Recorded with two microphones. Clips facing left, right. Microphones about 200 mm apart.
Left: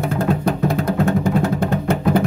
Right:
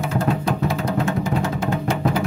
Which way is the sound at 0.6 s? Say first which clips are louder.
Left 4 dB; 60° left (ahead or behind).